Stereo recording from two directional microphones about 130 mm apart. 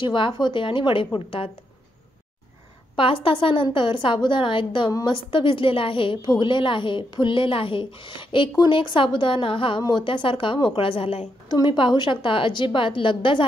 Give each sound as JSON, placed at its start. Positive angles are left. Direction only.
{"t": 0.0, "sound": "a woman's voice", "side_deg": 40}
{"t": 3.0, "sound": "a woman's voice", "side_deg": 40}
{"t": 11.5, "sound": "a woman's voice", "side_deg": 35}